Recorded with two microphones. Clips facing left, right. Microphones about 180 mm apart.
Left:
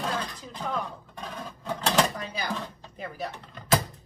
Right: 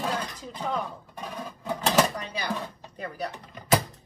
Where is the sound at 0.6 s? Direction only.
5° right (ahead or behind).